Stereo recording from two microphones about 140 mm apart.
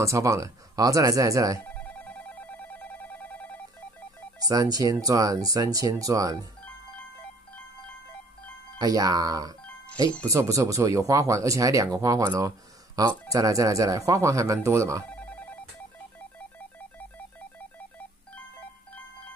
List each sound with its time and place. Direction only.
0.0 s speech: 20° right (ahead or behind)
1.6 s telephone: 10° left (ahead or behind)
4.5 s speech: 25° right (ahead or behind)
8.7 s speech: 25° right (ahead or behind)
15.0 s telephone bell ringing: 10° left (ahead or behind)
16.2 s music: 10° left (ahead or behind)